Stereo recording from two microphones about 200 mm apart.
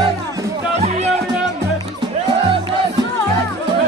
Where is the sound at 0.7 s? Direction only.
35° right (ahead or behind).